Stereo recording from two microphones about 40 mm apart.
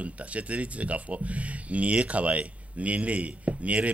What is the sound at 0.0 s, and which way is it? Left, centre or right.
Speech, right.